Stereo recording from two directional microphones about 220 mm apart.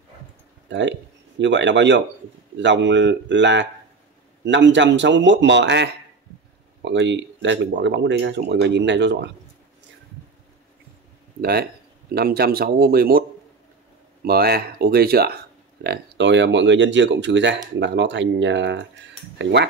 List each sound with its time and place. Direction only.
0.7 s speech: 55° right (ahead or behind)
12.1 s speech: 45° right (ahead or behind)
14.2 s speech: 45° right (ahead or behind)